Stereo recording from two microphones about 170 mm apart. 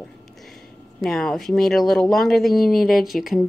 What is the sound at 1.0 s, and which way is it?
Speech, centre (ahead or behind).